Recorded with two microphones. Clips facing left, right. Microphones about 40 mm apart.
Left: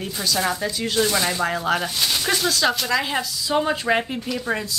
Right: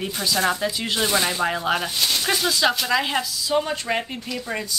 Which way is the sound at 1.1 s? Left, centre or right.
Centre.